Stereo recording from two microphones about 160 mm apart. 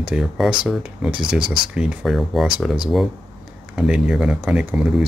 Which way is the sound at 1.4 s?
30° right (ahead or behind).